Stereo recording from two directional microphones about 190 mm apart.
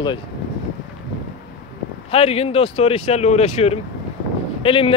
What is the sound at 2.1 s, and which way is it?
Speech, 30° left (ahead or behind).